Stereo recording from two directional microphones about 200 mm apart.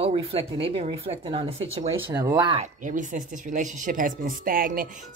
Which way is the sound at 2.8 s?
40° right (ahead or behind).